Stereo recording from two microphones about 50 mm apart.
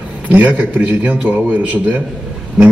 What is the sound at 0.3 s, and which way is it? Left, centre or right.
A man's voice, right.